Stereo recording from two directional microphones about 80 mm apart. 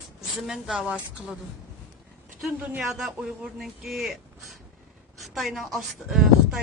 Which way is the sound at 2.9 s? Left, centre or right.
Centre.